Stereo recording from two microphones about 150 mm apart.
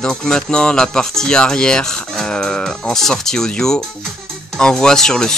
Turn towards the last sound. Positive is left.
turn(degrees=5)  # may be behind; listen again after turning